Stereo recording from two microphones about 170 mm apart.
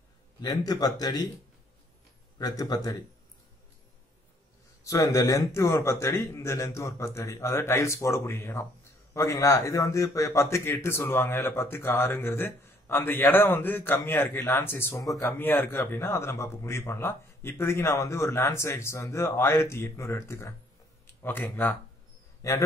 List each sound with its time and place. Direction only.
0.4 s speech: 20° left (ahead or behind)
2.3 s speech: 20° left (ahead or behind)
4.8 s a man's voice: 20° left (ahead or behind)